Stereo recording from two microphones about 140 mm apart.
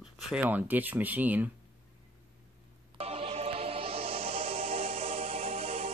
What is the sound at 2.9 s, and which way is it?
Music, 45° right (ahead or behind).